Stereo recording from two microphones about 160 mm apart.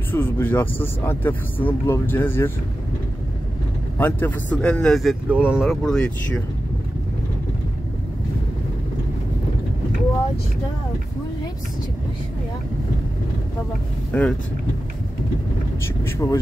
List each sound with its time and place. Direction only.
0.1 s speech: 15° left (ahead or behind)
4.0 s speech: 10° left (ahead or behind)
14.1 s speech: 10° left (ahead or behind)
16.2 s speech: 20° left (ahead or behind)